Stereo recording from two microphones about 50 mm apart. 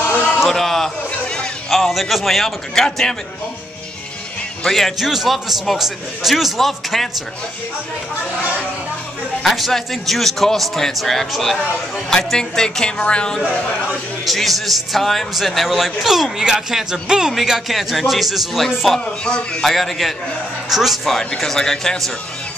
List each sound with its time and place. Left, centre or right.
0.5 s a sound: centre
1.2 s a sound: centre
1.7 s a man's voice: centre
4.6 s a man's voice: centre
4.9 s a man's voice: centre
9.4 s a man's voice: centre
14.2 s a man's voice: centre
19.2 s speech: centre
19.6 s a man's voice: centre